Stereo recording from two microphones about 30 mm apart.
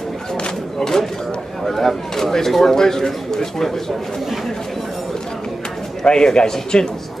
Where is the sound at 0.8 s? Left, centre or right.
Centre.